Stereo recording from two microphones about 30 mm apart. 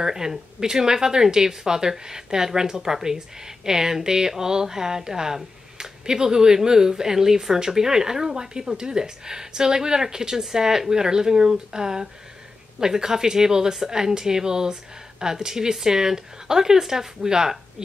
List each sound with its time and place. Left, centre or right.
0.0 s speech: centre